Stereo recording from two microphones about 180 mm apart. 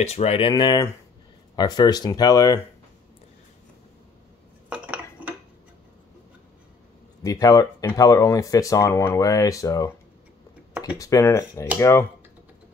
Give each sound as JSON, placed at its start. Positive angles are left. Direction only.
{"t": 0.0, "sound": "speech", "side_deg": 35}
{"t": 4.6, "sound": "cutlery", "side_deg": -5}
{"t": 7.2, "sound": "speech", "side_deg": 20}
{"t": 11.0, "sound": "speech", "side_deg": 20}